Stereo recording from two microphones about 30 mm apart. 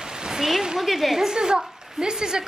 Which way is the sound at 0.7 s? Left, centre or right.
Centre.